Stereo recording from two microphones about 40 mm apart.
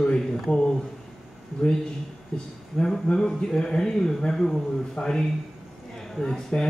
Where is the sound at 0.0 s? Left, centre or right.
Left.